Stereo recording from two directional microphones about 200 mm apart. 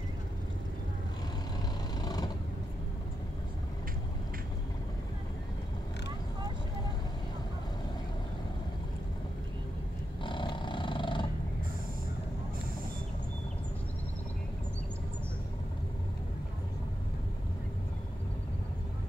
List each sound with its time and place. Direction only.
2.0 s vehicle: 20° left (ahead or behind)
10.2 s roaring cats: 25° left (ahead or behind)